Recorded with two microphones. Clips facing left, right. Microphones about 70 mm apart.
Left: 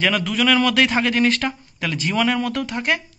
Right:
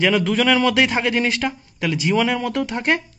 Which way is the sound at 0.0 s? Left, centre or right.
Right.